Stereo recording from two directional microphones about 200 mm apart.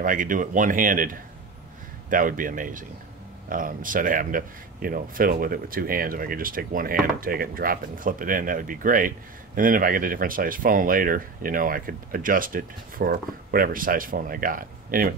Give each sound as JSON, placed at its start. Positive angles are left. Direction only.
{"t": 0.0, "sound": "speech", "side_deg": -40}